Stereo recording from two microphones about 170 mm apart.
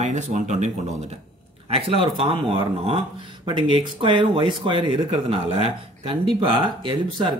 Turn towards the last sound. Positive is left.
turn(degrees=-30)  # may be behind; listen again after turning